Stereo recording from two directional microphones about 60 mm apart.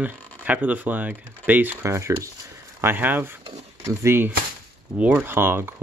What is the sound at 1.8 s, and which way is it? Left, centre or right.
Speech, right.